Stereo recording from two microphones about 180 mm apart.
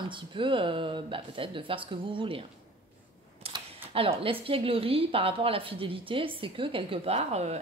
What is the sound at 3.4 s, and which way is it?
Speech, 30° right (ahead or behind).